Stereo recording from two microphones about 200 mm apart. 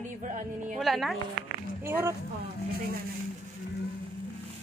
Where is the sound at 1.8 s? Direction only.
10° right (ahead or behind).